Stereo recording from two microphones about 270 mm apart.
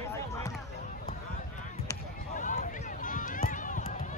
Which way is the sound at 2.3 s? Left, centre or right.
Left.